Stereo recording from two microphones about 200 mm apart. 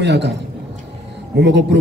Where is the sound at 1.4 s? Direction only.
60° right (ahead or behind).